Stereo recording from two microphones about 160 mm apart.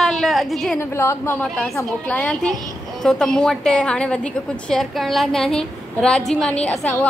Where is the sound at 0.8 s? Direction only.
15° left (ahead or behind).